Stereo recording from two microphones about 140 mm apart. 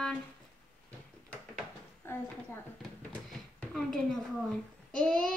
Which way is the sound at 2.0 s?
15° left (ahead or behind).